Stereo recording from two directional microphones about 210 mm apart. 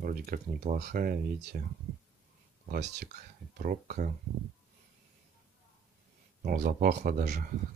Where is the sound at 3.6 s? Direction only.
40° right (ahead or behind).